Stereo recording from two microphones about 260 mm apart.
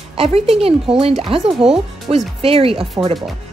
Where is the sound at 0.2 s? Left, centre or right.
Right.